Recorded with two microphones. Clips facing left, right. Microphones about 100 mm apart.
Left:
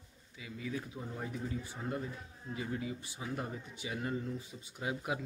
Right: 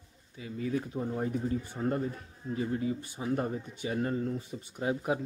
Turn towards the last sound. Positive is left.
turn(degrees=-35)  # may be behind; listen again after turning